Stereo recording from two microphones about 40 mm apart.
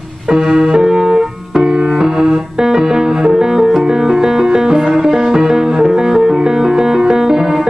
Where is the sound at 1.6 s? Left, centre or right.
Centre.